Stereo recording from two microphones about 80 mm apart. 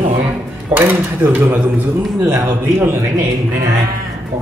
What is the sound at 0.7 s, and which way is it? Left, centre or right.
Speech, right.